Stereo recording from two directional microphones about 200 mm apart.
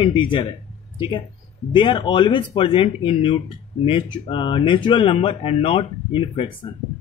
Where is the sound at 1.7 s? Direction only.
25° left (ahead or behind).